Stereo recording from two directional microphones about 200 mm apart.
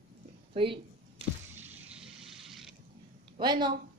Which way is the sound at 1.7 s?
5° right (ahead or behind).